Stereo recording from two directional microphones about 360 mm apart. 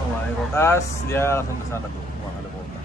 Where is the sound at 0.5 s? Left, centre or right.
Centre.